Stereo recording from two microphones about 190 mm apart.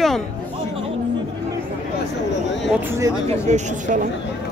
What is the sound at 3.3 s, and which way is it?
Speech, 40° right (ahead or behind).